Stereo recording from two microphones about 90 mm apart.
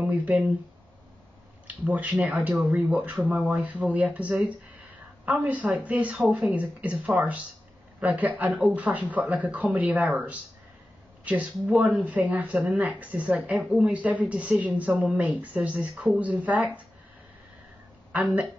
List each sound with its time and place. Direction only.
0.0 s speech: 15° right (ahead or behind)
1.9 s speech: 15° right (ahead or behind)